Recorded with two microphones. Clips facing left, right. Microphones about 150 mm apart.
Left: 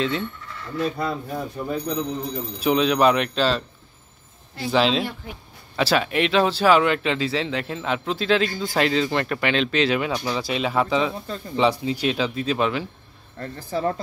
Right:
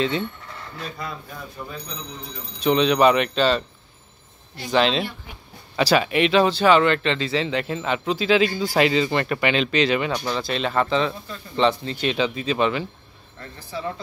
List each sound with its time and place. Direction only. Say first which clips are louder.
0.9 s speech: left 7 dB; 45° left (ahead or behind)
2.6 s speech: right 1 dB; 5° left (ahead or behind)
4.6 s speech: even; 5° left (ahead or behind)
13.4 s speech: left 6 dB; 45° left (ahead or behind)